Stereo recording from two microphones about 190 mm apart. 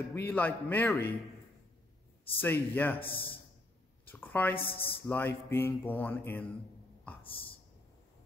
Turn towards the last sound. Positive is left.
turn(degrees=30)  # may be behind; listen again after turning